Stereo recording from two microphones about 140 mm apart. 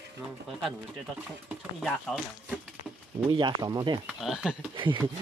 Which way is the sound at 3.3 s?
30° right (ahead or behind).